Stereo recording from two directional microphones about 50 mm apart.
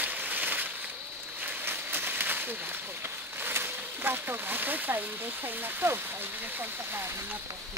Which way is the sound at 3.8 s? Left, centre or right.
Right.